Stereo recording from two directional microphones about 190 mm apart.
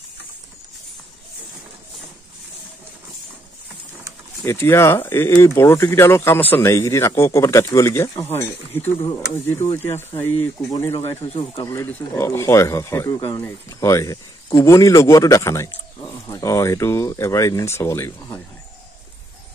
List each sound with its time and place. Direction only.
4.5 s speech: 15° left (ahead or behind)
9.5 s speech: 10° left (ahead or behind)